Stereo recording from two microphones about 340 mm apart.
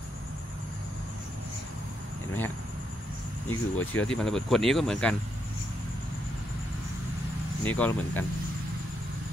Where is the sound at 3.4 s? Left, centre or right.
Left.